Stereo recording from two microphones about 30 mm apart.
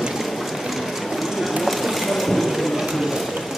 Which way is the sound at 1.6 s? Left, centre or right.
Centre.